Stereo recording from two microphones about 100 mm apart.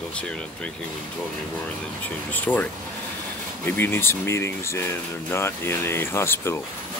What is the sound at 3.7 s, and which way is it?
Speech, 20° left (ahead or behind).